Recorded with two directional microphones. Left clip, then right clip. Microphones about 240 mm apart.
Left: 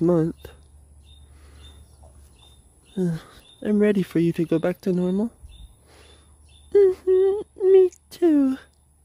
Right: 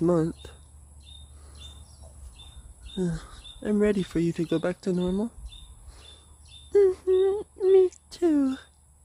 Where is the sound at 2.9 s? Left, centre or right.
Left.